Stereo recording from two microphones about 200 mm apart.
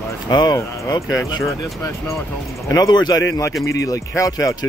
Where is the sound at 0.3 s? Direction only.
20° left (ahead or behind).